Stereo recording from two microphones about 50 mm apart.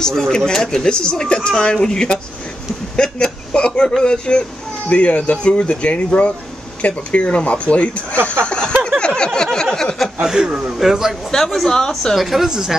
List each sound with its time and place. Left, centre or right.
0.0 s a woman's voice: centre; by 8.2 s left
8.3 s a sound: left
10.2 s a man's voice: centre
10.8 s a man's voice: centre
11.3 s speech: centre
12.2 s a woman's voice: centre